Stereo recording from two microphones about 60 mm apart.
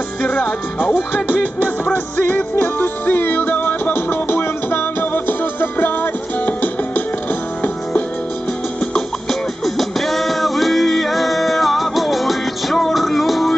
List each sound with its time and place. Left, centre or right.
0.2 s music: left
2.6 s music: left
8.9 s music: centre